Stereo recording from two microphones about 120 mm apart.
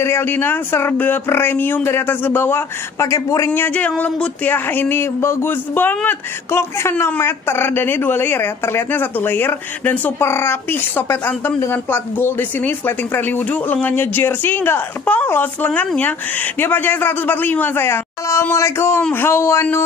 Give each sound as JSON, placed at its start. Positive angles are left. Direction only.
{"t": 0.0, "sound": "speech", "side_deg": 20}